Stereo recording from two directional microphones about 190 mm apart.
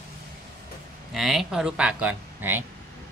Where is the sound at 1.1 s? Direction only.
Centre (ahead or behind).